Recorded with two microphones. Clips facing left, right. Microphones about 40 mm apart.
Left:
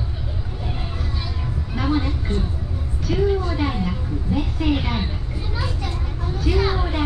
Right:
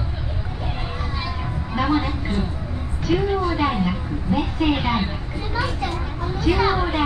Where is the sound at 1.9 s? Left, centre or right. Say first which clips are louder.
Left 2 dB; right.